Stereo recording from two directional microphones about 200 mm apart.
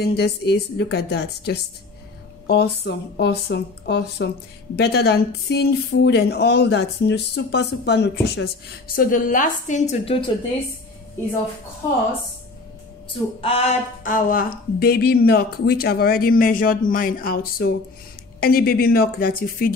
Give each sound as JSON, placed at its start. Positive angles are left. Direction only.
{"t": 0.0, "sound": "speech", "side_deg": 55}
{"t": 13.4, "sound": "speech", "side_deg": 30}
{"t": 14.0, "sound": "speech", "side_deg": 45}